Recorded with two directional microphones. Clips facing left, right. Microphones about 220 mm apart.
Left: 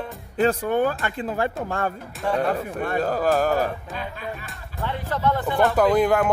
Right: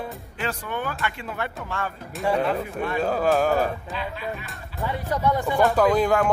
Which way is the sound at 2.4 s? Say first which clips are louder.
Left 1 dB; 50° left (ahead or behind).